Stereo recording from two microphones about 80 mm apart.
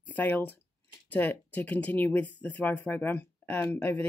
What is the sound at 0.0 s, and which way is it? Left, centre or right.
Speech, left.